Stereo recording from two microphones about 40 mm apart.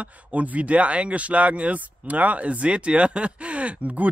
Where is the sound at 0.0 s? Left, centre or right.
Right.